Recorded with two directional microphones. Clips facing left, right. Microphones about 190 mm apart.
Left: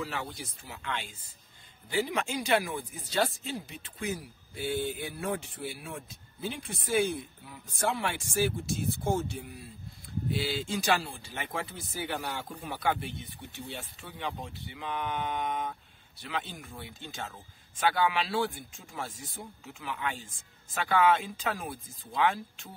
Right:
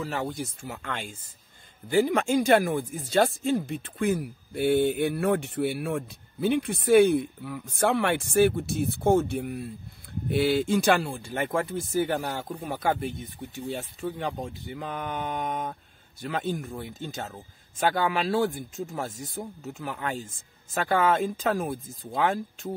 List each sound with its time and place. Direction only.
0.0 s speech: 45° right (ahead or behind)